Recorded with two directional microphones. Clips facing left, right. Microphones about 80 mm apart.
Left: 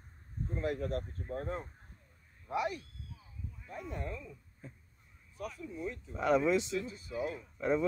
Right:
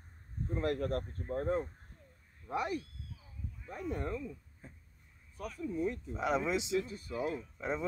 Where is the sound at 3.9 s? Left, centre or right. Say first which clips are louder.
Right 3 dB; right.